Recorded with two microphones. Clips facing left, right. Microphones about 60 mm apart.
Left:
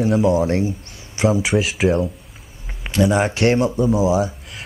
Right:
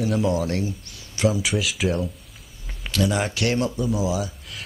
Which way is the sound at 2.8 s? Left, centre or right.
Left.